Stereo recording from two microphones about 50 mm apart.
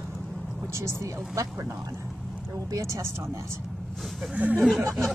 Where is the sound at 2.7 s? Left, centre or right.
Right.